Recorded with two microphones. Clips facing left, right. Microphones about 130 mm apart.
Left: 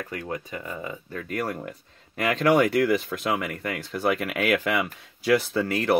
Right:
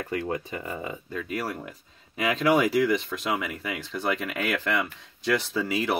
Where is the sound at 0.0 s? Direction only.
30° right (ahead or behind).